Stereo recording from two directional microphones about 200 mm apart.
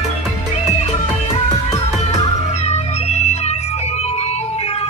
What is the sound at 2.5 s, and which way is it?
Music, 35° left (ahead or behind).